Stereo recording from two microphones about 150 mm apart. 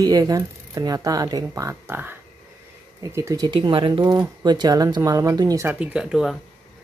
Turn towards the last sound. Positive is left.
turn(degrees=-5)  # may be behind; listen again after turning